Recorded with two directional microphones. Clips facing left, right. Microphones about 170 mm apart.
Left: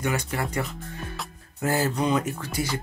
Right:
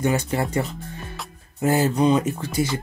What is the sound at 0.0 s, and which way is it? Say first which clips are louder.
Speech: right 5 dB; 25° right (ahead or behind).